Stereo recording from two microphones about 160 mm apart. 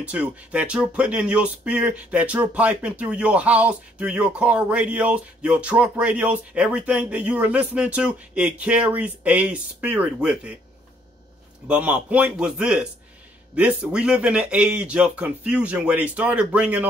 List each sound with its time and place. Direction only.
0.0 s speech: 10° right (ahead or behind)
11.6 s speech: 10° right (ahead or behind)